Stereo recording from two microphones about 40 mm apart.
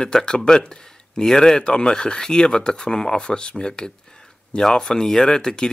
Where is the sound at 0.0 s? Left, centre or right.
Centre.